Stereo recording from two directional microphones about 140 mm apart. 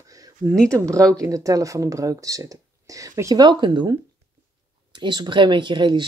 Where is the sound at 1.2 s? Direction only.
25° right (ahead or behind).